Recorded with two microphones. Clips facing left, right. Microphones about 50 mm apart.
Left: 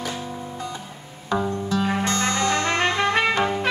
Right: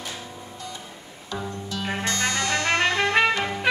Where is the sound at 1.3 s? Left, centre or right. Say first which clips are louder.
Left 8 dB; left.